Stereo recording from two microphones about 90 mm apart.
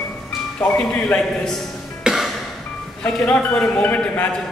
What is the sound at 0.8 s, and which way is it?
Speech, 10° left (ahead or behind).